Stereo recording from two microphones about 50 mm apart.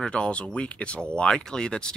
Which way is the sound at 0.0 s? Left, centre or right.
Left.